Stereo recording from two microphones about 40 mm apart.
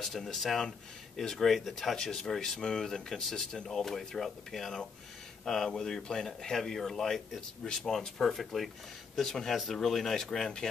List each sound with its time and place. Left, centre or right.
0.3 s speech: centre
2.0 s speech: centre